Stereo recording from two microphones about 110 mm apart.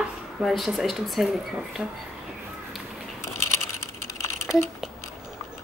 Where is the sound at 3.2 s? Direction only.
25° left (ahead or behind).